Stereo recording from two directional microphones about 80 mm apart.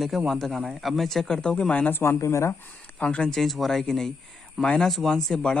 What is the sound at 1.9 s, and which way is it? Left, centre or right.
Speech, left.